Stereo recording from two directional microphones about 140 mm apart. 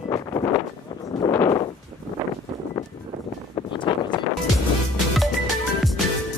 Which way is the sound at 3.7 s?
35° left (ahead or behind).